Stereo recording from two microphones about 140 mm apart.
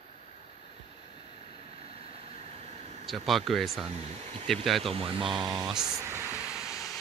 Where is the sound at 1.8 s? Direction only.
45° right (ahead or behind).